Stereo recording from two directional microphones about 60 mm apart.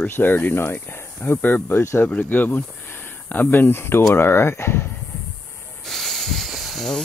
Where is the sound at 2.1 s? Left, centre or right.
Left.